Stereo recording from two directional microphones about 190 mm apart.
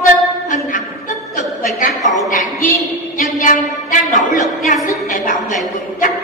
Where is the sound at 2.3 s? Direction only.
45° left (ahead or behind).